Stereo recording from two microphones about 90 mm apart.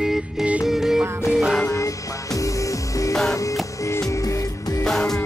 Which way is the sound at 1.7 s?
35° left (ahead or behind).